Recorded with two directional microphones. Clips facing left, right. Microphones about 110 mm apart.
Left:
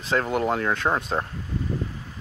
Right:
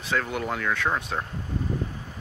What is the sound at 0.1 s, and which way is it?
Speech, 35° left (ahead or behind).